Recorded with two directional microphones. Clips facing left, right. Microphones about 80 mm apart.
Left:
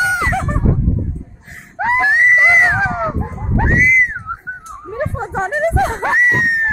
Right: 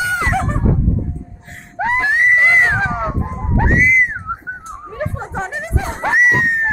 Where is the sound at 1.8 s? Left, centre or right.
Centre.